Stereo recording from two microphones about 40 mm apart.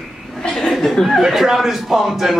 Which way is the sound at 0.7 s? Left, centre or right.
Centre.